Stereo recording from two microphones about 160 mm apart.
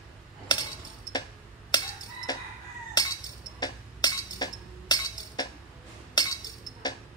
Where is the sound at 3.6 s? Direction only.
25° left (ahead or behind).